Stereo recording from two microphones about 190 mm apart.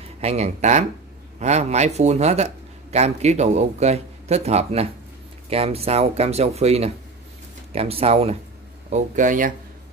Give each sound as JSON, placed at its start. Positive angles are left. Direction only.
{"t": 0.2, "sound": "speech", "side_deg": -35}